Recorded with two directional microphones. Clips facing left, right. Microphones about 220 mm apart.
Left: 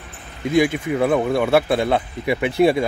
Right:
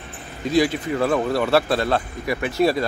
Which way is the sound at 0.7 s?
10° left (ahead or behind).